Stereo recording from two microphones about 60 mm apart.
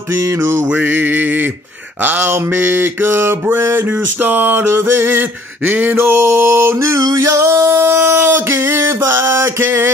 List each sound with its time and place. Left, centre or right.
0.1 s music: right
0.7 s male singing: right
2.0 s mantra: right
5.6 s a sound: right
6.1 s music: right
7.0 s singing: right